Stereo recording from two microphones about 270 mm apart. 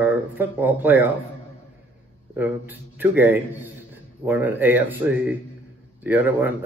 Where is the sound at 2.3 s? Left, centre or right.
Centre.